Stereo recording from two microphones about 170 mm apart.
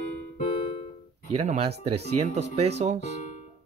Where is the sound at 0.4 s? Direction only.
30° left (ahead or behind).